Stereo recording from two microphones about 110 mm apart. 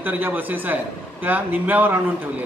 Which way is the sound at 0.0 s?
15° right (ahead or behind).